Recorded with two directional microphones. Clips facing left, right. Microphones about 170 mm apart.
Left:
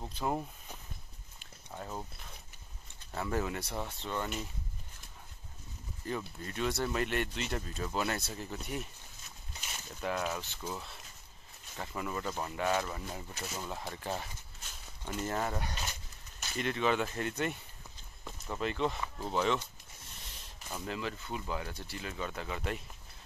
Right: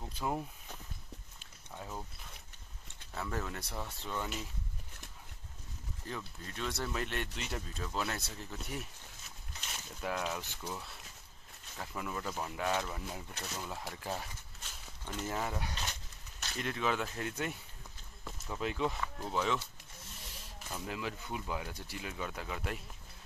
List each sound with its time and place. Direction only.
0.1 s speech: 5° left (ahead or behind)
3.2 s speech: 5° left (ahead or behind)
6.0 s speech: 5° left (ahead or behind)
18.2 s a sound: 5° right (ahead or behind)
18.9 s speech: 5° left (ahead or behind)